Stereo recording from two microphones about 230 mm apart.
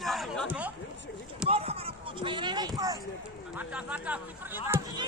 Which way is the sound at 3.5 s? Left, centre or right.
Centre.